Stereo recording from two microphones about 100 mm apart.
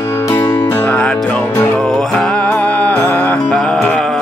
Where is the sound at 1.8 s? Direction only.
5° left (ahead or behind).